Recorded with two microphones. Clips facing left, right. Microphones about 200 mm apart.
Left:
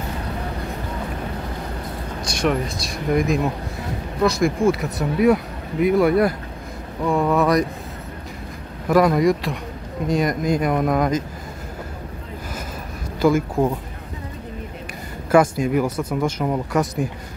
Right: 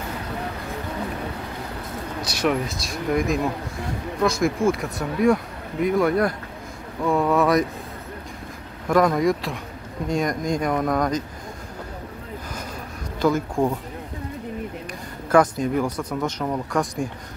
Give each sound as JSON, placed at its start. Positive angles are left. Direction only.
{"t": 2.2, "sound": "speech", "side_deg": -5}
{"t": 8.8, "sound": "speech", "side_deg": 5}
{"t": 13.2, "sound": "speech", "side_deg": 5}
{"t": 15.3, "sound": "speech", "side_deg": 10}